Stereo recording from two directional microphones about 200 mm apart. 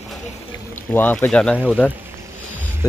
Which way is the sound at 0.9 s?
10° left (ahead or behind).